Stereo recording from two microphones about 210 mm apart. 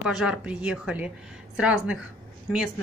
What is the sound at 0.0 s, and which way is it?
Speech, 5° right (ahead or behind).